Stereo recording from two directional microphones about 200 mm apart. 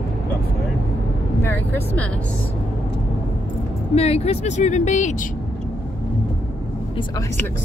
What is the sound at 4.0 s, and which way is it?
Speech, 30° left (ahead or behind).